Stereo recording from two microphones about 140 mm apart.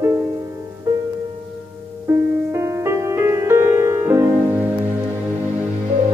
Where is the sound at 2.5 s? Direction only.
20° right (ahead or behind).